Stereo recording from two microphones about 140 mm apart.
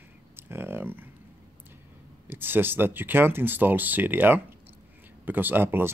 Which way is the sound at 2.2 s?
15° right (ahead or behind).